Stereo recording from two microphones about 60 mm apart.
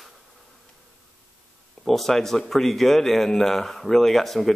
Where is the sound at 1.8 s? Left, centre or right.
Centre.